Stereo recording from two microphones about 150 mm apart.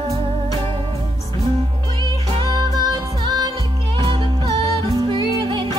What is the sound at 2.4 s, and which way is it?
Music, 30° right (ahead or behind).